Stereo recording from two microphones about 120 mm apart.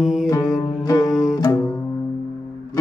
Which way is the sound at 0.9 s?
25° left (ahead or behind).